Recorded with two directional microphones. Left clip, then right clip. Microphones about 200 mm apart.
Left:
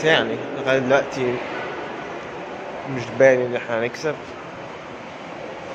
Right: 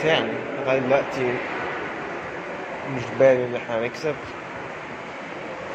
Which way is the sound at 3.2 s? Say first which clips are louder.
Left 2 dB; 15° left (ahead or behind).